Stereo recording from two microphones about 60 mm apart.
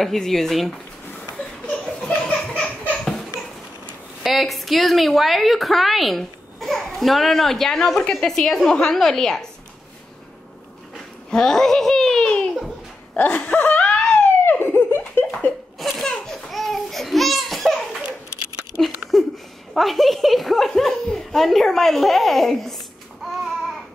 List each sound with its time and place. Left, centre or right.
0.0 s a woman's voice: centre
1.3 s a sound: centre
4.2 s a woman's voice: centre
11.2 s a child's voice: centre
13.1 s wail: left
14.1 s a sound: left
15.8 s laughter: centre
16.1 s a sound: centre
18.8 s a child's voice: centre